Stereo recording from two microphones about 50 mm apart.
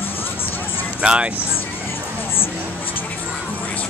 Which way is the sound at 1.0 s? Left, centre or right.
Right.